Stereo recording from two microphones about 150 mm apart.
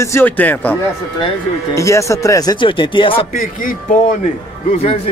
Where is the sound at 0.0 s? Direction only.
15° left (ahead or behind).